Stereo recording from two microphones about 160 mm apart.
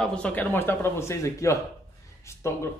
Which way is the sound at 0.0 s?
5° left (ahead or behind).